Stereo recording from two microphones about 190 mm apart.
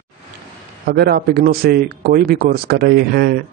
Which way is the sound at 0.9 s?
55° right (ahead or behind).